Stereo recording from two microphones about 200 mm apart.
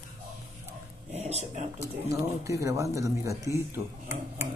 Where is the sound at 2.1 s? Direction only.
15° right (ahead or behind).